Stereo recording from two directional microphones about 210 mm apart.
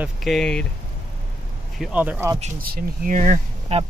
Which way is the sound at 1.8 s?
5° right (ahead or behind).